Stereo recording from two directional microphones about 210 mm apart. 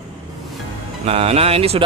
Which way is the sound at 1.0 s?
30° right (ahead or behind).